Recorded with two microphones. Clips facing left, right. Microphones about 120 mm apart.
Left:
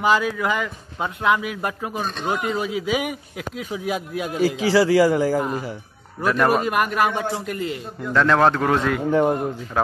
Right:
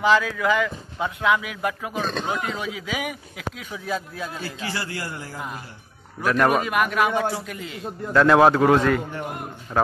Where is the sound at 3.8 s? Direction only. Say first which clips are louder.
Left 2 dB; 15° left (ahead or behind).